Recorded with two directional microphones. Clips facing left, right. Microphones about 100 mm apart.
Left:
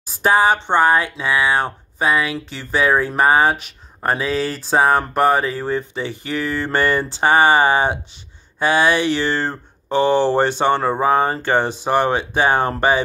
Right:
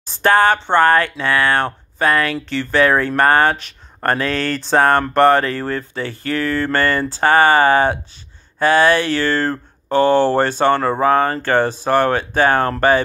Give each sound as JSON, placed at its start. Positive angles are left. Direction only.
{"t": 0.0, "sound": "a sound", "side_deg": 10}
{"t": 0.8, "sound": "speech", "side_deg": 10}
{"t": 5.6, "sound": "speech", "side_deg": 15}